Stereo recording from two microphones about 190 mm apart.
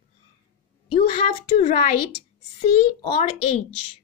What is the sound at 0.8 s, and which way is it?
A child's voice, 30° left (ahead or behind).